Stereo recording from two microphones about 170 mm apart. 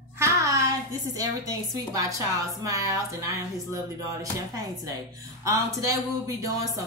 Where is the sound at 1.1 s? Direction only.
20° right (ahead or behind).